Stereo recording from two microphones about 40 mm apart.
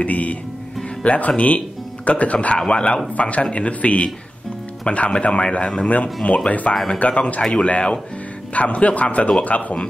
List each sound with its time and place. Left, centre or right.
0.0 s music: left
1.0 s speech: left